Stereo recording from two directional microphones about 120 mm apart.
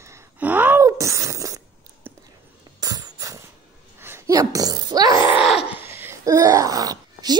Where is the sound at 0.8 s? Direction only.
25° right (ahead or behind).